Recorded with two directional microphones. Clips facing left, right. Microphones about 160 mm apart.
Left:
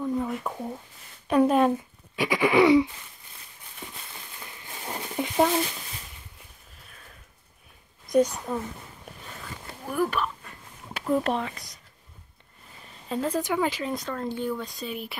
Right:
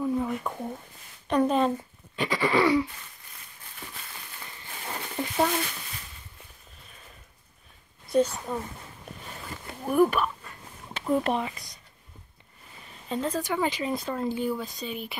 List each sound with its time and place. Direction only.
0.0 s a sound: centre (ahead or behind)
1.2 s speech: 5° left (ahead or behind)
2.1 s a sound: 15° left (ahead or behind)
4.6 s a sound: 15° left (ahead or behind)
8.1 s speech: 15° left (ahead or behind)
8.5 s speech: centre (ahead or behind)
9.8 s speech: 15° right (ahead or behind)
10.9 s speech: 5° left (ahead or behind)
13.1 s speech: 5° left (ahead or behind)